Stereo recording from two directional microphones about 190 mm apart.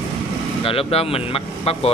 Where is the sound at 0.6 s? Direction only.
30° left (ahead or behind).